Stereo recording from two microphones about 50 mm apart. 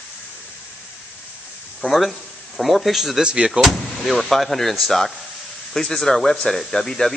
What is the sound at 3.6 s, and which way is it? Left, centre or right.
Speech, centre.